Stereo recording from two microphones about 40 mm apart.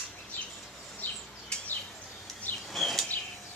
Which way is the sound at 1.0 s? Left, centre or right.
Left.